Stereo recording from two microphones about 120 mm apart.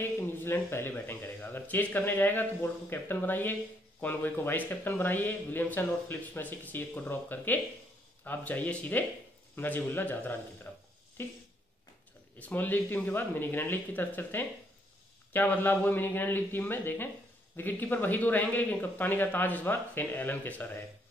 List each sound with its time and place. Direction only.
0.0 s speech: 20° left (ahead or behind)
12.4 s speech: 15° left (ahead or behind)